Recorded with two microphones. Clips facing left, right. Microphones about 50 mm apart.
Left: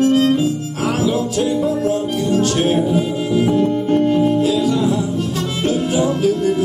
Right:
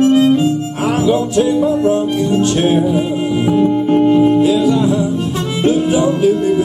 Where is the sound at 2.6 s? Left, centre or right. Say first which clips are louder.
Right 3 dB; right.